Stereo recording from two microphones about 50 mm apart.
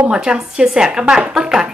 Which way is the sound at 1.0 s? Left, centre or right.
Right.